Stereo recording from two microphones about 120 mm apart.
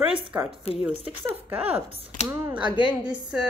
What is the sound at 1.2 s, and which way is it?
Speech, 15° right (ahead or behind).